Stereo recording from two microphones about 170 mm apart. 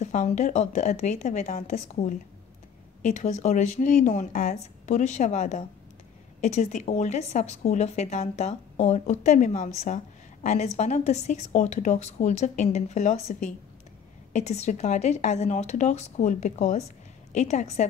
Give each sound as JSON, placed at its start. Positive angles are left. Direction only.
{"t": 0.0, "sound": "speech", "side_deg": 45}